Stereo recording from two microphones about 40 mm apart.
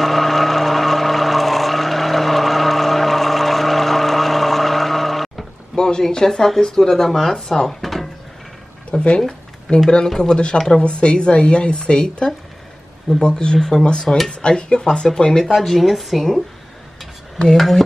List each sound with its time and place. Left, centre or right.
0.0 s vehicle: centre
5.8 s a sound: left
6.0 s speech: centre
7.8 s drawer open or close: centre
8.9 s speech: left
15.5 s speech: centre
17.5 s speech: centre